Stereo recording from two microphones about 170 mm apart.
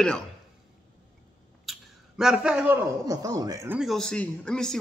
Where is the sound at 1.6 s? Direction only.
Centre (ahead or behind).